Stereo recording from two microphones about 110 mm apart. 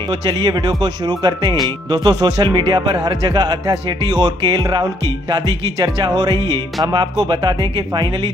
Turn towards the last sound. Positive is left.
turn(degrees=-45)  # may be behind; listen again after turning